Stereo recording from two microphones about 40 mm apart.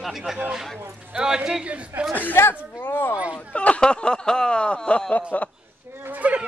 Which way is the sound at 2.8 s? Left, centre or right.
Left.